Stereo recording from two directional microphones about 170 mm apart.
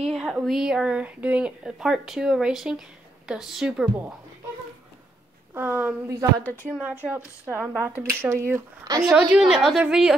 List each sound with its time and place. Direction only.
0.0 s speech: 5° right (ahead or behind)
5.5 s speech: 10° right (ahead or behind)
6.4 s a woman's voice: 10° left (ahead or behind)
6.7 s speech: 5° right (ahead or behind)
9.3 s speech: 5° right (ahead or behind)